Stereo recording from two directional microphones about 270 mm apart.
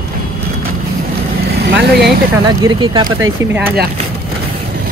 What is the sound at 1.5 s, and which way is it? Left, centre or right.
Vehicle, right.